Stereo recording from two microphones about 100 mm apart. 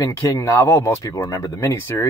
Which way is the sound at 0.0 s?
30° left (ahead or behind).